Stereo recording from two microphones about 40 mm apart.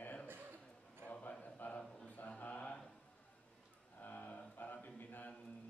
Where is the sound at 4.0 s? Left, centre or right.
Left.